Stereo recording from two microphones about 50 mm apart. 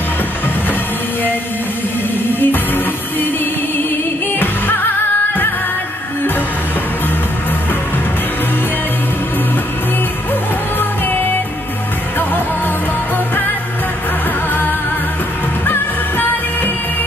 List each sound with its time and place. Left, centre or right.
2.4 s music: left
15.6 s music: left